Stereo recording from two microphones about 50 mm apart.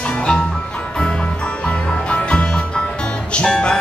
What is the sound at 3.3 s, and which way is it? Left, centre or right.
Music, centre.